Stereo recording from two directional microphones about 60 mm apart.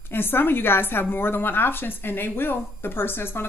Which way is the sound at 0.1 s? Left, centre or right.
Left.